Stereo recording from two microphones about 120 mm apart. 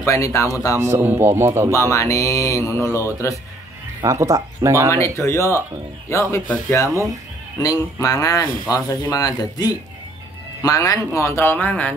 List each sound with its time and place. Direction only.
0.0 s mantra: 25° left (ahead or behind)
0.7 s speech: 25° right (ahead or behind)
1.7 s mantra: 25° left (ahead or behind)
4.0 s speech: 25° right (ahead or behind)
4.9 s mantra: 20° left (ahead or behind)
6.9 s speech: 30° right (ahead or behind)
7.5 s speech: 30° left (ahead or behind)
10.6 s mantra: 30° left (ahead or behind)
11.5 s speech: 10° left (ahead or behind)